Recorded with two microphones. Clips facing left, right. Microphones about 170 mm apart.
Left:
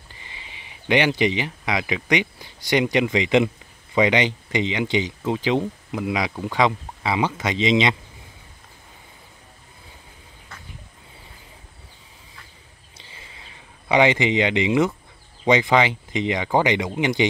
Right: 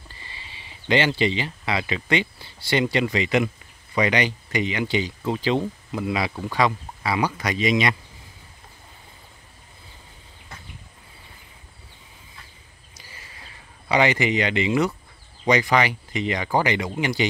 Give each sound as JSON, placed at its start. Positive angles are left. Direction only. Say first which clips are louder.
{"t": 0.1, "sound": "speech", "louder": "left 1 dB", "side_deg": 15}
{"t": 13.8, "sound": "speech", "louder": "left 2 dB", "side_deg": 20}